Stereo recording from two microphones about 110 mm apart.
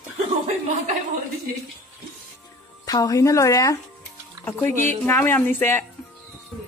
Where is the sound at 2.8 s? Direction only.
30° left (ahead or behind).